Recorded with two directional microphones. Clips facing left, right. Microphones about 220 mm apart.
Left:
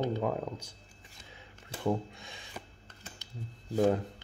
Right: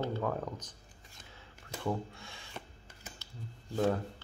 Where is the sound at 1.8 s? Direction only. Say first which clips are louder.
Left 4 dB; 20° left (ahead or behind).